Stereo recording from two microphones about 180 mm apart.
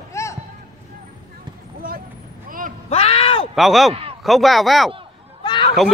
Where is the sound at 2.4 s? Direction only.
50° right (ahead or behind).